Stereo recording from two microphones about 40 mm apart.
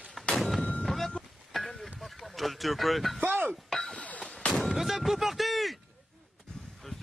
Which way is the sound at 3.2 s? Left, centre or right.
Right.